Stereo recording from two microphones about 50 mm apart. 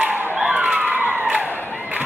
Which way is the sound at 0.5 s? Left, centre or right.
Right.